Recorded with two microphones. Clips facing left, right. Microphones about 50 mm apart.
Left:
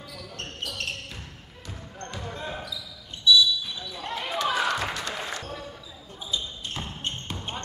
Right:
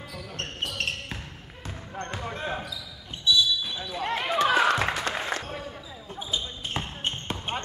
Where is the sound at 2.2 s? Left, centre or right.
Right.